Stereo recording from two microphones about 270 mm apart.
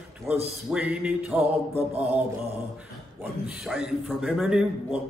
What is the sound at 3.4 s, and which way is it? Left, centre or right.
Speech, centre.